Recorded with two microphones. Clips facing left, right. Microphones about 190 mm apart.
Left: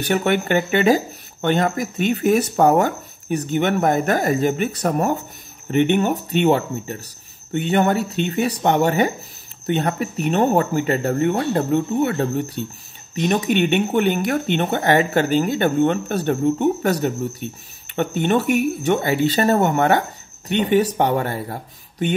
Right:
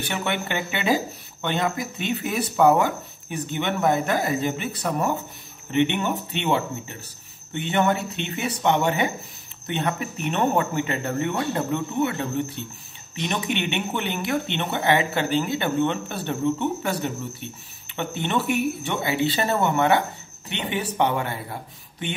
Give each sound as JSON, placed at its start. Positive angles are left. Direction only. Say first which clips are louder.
{"t": 0.0, "sound": "speech", "louder": "left 8 dB", "side_deg": 45}